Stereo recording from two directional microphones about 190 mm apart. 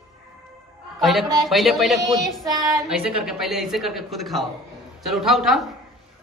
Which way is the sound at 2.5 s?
20° right (ahead or behind).